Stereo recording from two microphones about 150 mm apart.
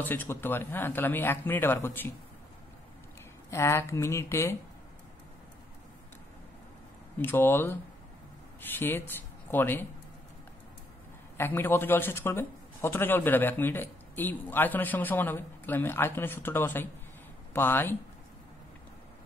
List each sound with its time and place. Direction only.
0.0 s a man's voice: 10° left (ahead or behind)
3.4 s speech: 20° left (ahead or behind)
7.2 s a man's voice: 15° left (ahead or behind)
11.3 s a man's voice: 15° left (ahead or behind)